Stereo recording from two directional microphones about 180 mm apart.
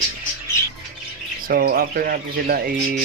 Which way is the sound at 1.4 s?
55° right (ahead or behind).